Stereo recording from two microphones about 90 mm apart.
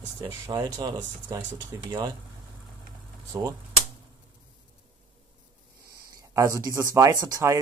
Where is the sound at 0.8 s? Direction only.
45° right (ahead or behind).